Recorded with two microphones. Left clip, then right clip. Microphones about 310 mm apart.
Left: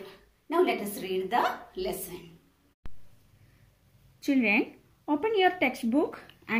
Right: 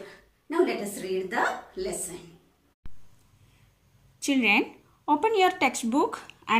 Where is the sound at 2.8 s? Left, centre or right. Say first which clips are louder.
Left 3 dB; centre.